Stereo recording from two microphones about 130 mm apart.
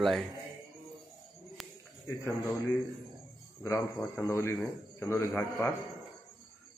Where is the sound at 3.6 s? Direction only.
20° left (ahead or behind).